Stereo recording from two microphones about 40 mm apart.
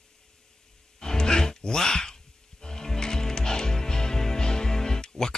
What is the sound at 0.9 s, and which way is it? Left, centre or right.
Music, centre.